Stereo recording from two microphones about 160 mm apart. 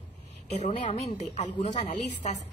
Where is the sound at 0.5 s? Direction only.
40° left (ahead or behind).